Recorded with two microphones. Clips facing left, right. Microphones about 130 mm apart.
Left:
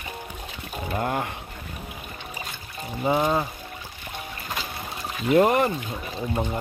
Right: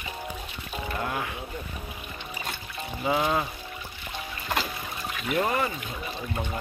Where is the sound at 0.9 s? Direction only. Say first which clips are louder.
Left 5 dB; 40° left (ahead or behind).